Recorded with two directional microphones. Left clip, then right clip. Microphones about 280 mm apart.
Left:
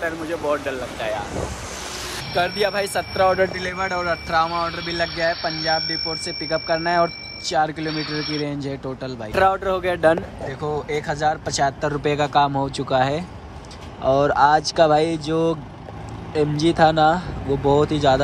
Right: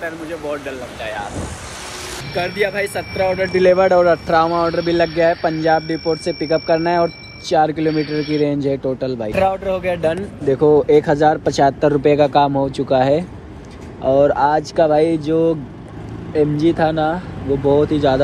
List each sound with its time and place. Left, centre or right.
0.0 s speech: centre
2.3 s speech: centre
3.5 s speech: centre
10.5 s speech: centre